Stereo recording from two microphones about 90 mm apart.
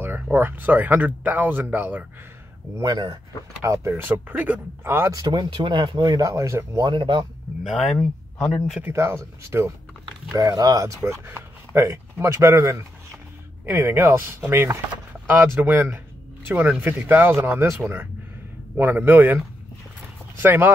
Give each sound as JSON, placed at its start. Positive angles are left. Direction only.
{"t": 0.0, "sound": "speech", "side_deg": -25}
{"t": 2.8, "sound": "speech", "side_deg": -50}
{"t": 3.6, "sound": "speech", "side_deg": -30}
{"t": 5.1, "sound": "speech", "side_deg": -55}
{"t": 6.0, "sound": "speech", "side_deg": -40}
{"t": 6.8, "sound": "speech", "side_deg": -60}
{"t": 7.6, "sound": "speech", "side_deg": 0}
{"t": 8.8, "sound": "speech", "side_deg": -30}
{"t": 11.1, "sound": "speech", "side_deg": -30}
{"t": 20.4, "sound": "speech", "side_deg": -25}